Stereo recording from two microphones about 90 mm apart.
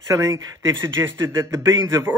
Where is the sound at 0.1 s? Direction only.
35° right (ahead or behind).